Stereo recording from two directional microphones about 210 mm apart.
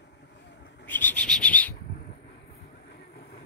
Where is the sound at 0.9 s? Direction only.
10° left (ahead or behind).